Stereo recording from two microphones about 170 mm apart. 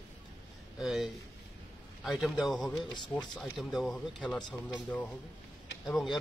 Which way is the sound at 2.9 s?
25° left (ahead or behind).